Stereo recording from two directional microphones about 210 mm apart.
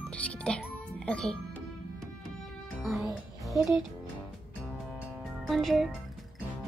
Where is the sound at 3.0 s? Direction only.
15° left (ahead or behind).